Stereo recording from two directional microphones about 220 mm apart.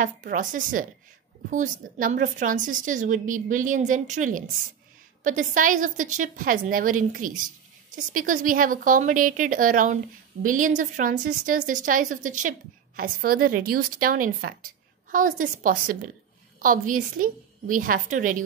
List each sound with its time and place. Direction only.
0.0 s a woman's voice: 35° right (ahead or behind)